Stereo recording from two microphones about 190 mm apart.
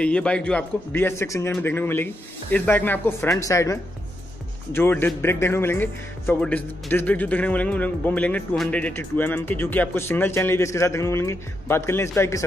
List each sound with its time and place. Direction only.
0.0 s speech: 5° left (ahead or behind)